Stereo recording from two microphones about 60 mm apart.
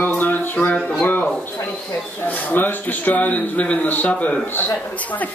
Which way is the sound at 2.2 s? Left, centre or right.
Left.